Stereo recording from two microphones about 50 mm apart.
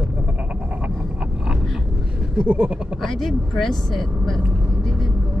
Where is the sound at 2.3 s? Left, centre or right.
Right.